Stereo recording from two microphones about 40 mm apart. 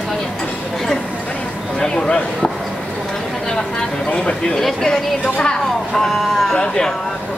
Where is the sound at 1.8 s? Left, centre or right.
Left.